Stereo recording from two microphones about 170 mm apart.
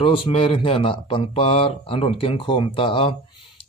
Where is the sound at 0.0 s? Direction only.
35° left (ahead or behind).